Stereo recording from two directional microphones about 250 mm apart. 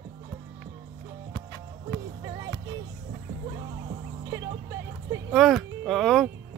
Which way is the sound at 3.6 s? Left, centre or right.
Centre.